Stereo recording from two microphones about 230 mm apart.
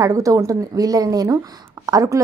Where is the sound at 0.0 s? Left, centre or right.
Centre.